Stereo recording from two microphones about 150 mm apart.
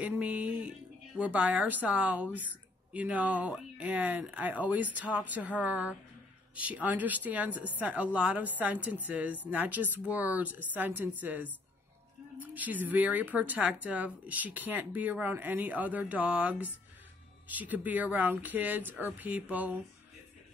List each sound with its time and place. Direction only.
0.0 s speech: 10° right (ahead or behind)